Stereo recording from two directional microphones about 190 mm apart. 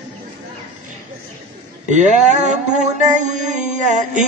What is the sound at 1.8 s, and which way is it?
Mantra, 40° right (ahead or behind).